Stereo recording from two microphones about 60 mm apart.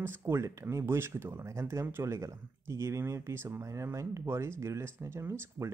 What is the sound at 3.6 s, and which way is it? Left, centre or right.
Speech, right.